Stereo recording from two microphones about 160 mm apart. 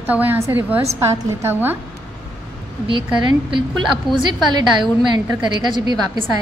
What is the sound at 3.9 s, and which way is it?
A woman's voice, 30° right (ahead or behind).